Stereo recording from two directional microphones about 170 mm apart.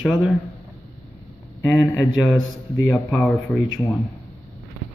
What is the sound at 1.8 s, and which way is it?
Speech, 15° left (ahead or behind).